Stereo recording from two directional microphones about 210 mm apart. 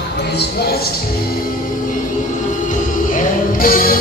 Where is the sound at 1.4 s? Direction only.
40° left (ahead or behind).